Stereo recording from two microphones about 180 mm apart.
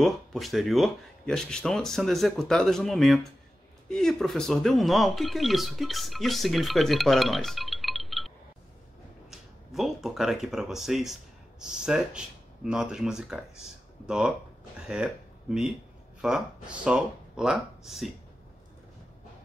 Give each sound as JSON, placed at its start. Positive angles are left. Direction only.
{"t": 0.0, "sound": "speech", "side_deg": 0}
{"t": 9.3, "sound": "speech", "side_deg": 0}